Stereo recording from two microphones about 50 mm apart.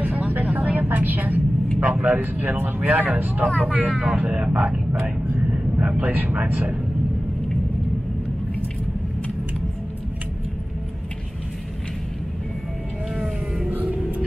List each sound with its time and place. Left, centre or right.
0.0 s vehicle: right
1.8 s speech: right